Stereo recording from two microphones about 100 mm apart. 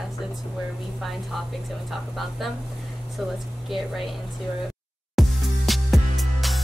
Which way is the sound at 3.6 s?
Centre (ahead or behind).